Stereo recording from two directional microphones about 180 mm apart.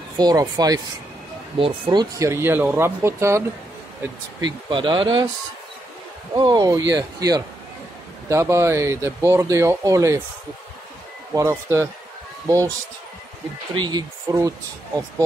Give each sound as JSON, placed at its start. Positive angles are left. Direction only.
{"t": 0.2, "sound": "speech", "side_deg": -20}
{"t": 4.4, "sound": "speech", "side_deg": -25}
{"t": 6.3, "sound": "speech", "side_deg": -25}
{"t": 11.3, "sound": "speech", "side_deg": -15}
{"t": 13.7, "sound": "speech", "side_deg": -25}